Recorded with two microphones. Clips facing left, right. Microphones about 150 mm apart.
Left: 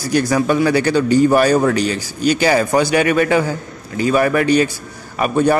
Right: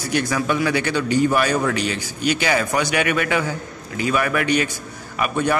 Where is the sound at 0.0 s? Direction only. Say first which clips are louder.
Left 6 dB; 35° left (ahead or behind).